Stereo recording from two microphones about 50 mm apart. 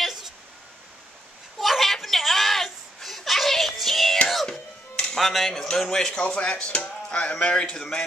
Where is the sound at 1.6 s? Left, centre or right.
Centre.